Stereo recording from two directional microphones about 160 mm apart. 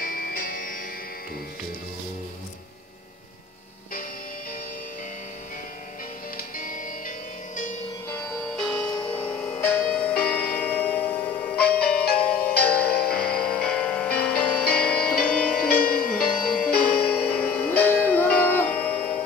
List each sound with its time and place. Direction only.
0.0 s music: 65° left (ahead or behind)
6.3 s music: 55° left (ahead or behind)
8.5 s music: 5° left (ahead or behind)
8.9 s music: 30° left (ahead or behind)
9.2 s music: 10° left (ahead or behind)